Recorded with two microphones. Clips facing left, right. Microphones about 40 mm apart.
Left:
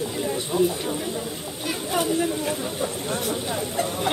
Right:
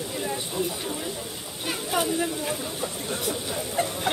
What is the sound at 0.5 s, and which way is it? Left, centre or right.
Speech, centre.